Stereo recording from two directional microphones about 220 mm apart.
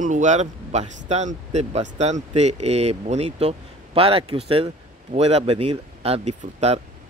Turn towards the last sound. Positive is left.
turn(degrees=-30)  # may be behind; listen again after turning